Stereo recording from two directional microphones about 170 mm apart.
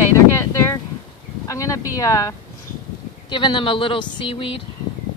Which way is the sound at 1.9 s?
20° left (ahead or behind).